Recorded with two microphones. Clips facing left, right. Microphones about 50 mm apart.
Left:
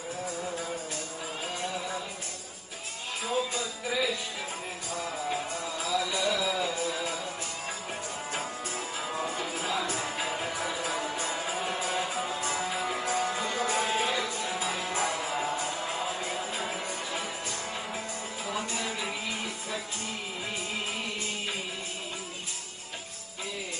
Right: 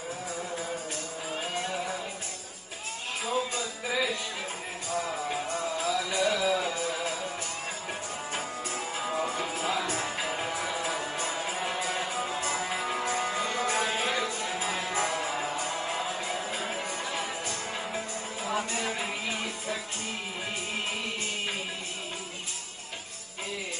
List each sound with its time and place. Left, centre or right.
1.5 s music: right
3.3 s music: right
8.3 s music: right